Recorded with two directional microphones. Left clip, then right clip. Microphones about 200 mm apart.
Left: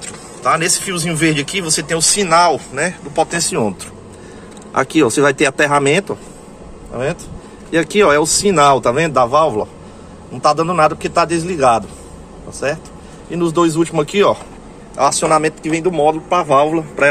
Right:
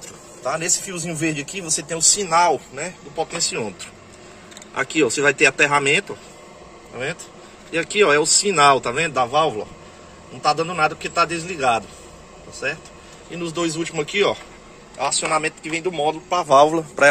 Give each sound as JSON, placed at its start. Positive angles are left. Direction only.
{"t": 0.4, "sound": "speech", "side_deg": -5}
{"t": 4.7, "sound": "a man's voice", "side_deg": 10}
{"t": 7.7, "sound": "a man's voice", "side_deg": 10}
{"t": 13.3, "sound": "a man's voice", "side_deg": 5}
{"t": 16.4, "sound": "a man's voice", "side_deg": -20}